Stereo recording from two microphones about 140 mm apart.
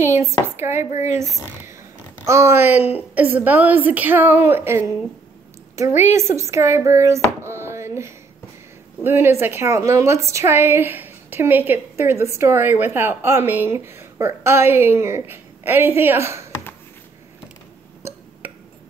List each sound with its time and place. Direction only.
0.0 s a woman's voice: 20° right (ahead or behind)
5.9 s a woman's voice: 55° left (ahead or behind)
6.1 s a woman's voice: 20° right (ahead or behind)